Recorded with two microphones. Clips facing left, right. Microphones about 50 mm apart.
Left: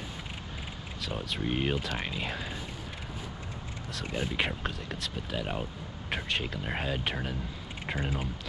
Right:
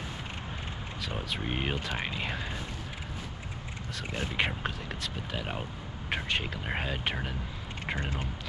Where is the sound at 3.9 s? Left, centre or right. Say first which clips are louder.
Even; centre.